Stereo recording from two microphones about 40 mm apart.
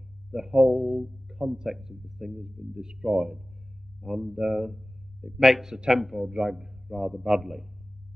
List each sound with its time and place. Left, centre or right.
0.3 s a man's voice: centre
2.3 s a man's voice: centre